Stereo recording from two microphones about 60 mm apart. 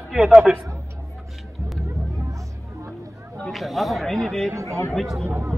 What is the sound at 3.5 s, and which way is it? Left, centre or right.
A man's voice, centre.